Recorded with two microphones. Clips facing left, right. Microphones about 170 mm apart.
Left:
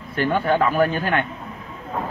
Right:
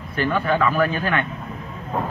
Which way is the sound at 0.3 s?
25° left (ahead or behind).